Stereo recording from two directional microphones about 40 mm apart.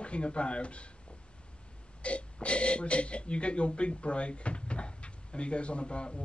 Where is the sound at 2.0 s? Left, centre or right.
Left.